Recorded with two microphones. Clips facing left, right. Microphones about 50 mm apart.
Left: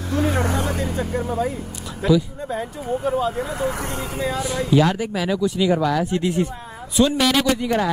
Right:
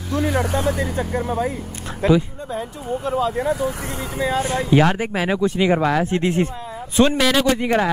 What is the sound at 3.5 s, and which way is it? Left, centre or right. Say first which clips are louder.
Speech: right 1 dB; left.